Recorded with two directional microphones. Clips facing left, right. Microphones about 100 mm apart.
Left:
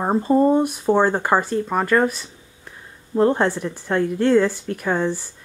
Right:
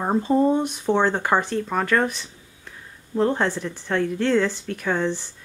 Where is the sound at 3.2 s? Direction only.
15° left (ahead or behind).